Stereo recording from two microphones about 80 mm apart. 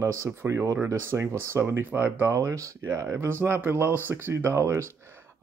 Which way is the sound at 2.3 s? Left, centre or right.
Right.